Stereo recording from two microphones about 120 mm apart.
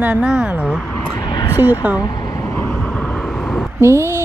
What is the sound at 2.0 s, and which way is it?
Vehicle, 30° left (ahead or behind).